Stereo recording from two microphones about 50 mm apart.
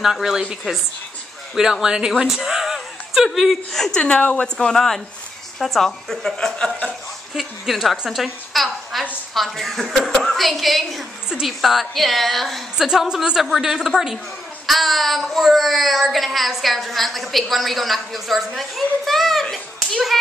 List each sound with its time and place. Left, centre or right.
0.0 s a woman's voice: centre
3.7 s speech: centre
4.0 s a woman's voice: left
7.3 s a woman's voice: centre
8.1 s a sound: centre
9.3 s a woman's voice: centre
12.7 s a woman's voice: centre